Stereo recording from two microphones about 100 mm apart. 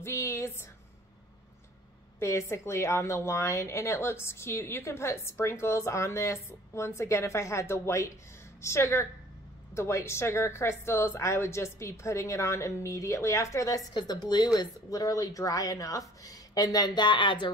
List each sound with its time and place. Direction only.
0.0 s a woman's voice: 30° left (ahead or behind)
2.1 s a woman's voice: 30° left (ahead or behind); by 17.5 s 55° left (ahead or behind)